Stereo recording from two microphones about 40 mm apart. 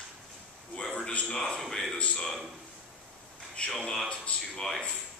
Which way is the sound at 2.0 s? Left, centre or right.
Left.